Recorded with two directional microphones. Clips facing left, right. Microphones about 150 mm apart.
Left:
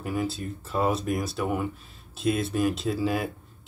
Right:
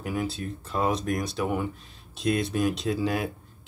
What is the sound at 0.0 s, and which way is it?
Speech, centre (ahead or behind).